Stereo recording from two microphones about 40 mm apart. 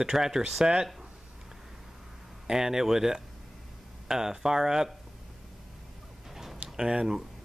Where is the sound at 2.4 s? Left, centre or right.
Centre.